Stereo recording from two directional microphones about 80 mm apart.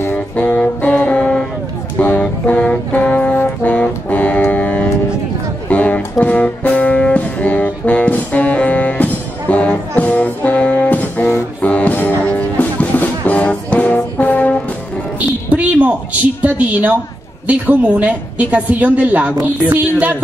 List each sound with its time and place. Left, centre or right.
0.0 s saxophone: left
2.0 s brass instrument: centre
5.7 s music: centre
15.1 s a sound: centre
17.5 s a woman's voice: centre